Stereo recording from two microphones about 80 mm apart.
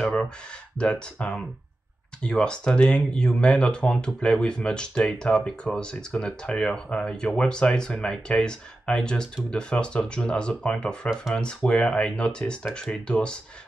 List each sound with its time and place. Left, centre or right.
0.0 s speech: centre